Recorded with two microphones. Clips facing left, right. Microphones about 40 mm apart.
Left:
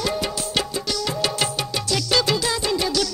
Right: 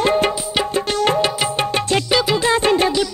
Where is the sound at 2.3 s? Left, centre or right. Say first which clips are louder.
Right 7 dB; right.